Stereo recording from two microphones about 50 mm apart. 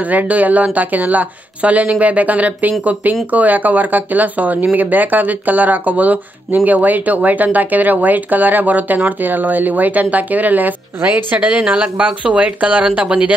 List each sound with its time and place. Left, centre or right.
0.1 s speech: right